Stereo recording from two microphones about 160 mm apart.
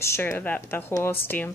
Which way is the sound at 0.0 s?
15° left (ahead or behind).